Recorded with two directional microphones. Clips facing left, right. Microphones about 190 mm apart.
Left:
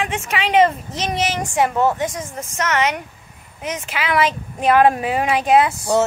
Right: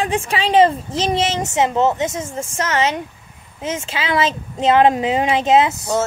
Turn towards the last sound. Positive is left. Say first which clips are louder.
# even
turn(degrees=-20)  # may be behind; listen again after turning